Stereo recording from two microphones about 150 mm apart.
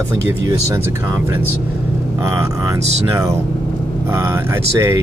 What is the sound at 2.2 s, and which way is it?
Speech, 20° right (ahead or behind).